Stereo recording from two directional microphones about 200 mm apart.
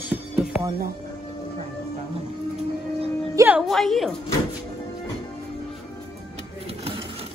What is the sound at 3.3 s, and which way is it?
Speech, 5° right (ahead or behind).